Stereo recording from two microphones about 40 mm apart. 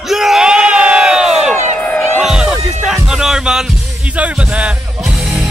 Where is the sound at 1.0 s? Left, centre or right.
Centre.